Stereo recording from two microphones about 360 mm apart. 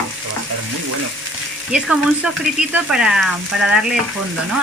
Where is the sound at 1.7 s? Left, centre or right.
Centre.